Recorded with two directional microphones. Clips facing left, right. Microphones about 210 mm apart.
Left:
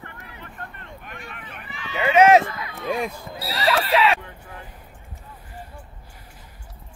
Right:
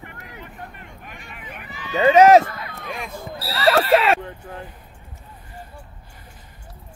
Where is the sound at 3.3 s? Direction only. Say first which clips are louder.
Right 1 dB; 30° right (ahead or behind).